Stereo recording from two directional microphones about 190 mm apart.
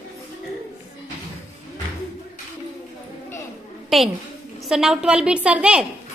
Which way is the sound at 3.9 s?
Centre (ahead or behind).